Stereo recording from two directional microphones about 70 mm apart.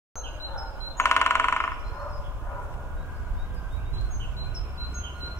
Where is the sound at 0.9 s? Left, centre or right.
Left.